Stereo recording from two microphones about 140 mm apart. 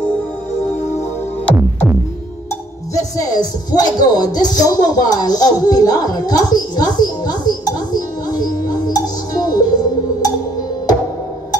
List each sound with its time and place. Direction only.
3.2 s speech: 30° left (ahead or behind)